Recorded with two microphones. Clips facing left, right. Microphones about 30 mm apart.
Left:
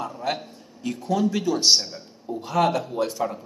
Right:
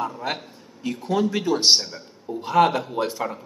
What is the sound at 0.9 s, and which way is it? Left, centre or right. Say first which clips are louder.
A man's voice: right 1 dB; right.